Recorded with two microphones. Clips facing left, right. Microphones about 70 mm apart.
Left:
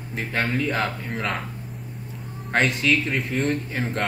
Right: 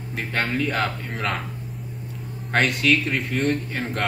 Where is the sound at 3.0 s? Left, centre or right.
Centre.